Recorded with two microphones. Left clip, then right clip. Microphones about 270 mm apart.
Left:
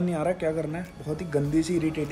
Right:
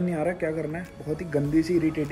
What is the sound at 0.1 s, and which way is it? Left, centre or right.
Speech, centre.